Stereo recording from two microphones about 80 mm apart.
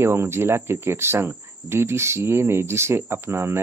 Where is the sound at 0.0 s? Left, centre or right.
Right.